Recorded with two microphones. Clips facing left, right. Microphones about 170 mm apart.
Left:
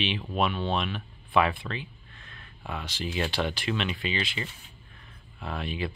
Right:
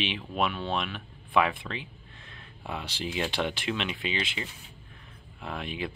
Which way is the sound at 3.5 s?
15° right (ahead or behind).